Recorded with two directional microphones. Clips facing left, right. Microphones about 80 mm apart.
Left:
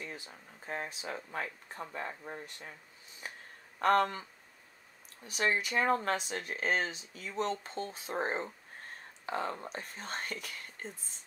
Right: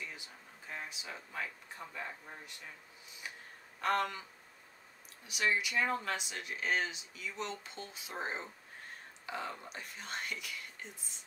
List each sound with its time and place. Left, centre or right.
0.0 s speech: left
3.8 s speech: left